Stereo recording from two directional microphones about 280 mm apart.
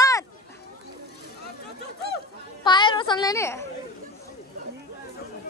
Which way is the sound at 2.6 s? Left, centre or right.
Centre.